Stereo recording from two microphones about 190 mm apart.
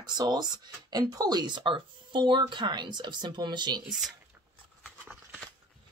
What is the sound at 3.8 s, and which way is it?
Speech, centre (ahead or behind).